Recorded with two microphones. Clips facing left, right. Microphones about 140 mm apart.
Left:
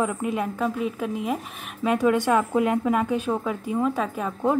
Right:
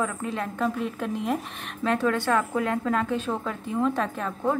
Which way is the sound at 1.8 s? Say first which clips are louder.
Left 3 dB; 15° left (ahead or behind).